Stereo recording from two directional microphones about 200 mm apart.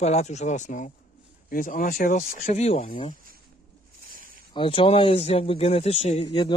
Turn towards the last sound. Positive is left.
turn(degrees=25)  # may be behind; listen again after turning